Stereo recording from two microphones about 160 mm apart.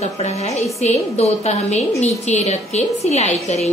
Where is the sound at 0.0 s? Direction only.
40° left (ahead or behind).